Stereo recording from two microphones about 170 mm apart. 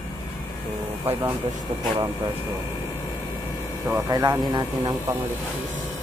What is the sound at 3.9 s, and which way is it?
Speech, 20° right (ahead or behind).